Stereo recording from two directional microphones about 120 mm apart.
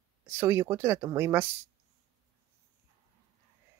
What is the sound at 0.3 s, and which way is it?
Speech, 20° right (ahead or behind).